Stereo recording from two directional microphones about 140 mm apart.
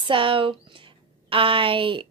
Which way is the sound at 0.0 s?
40° right (ahead or behind).